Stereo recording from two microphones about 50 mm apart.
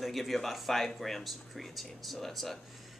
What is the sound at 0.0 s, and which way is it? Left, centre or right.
Speech, centre.